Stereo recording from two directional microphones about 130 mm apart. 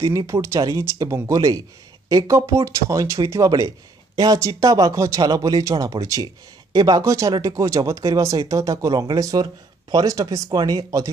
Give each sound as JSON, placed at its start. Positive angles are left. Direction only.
{"t": 0.0, "sound": "speech", "side_deg": -25}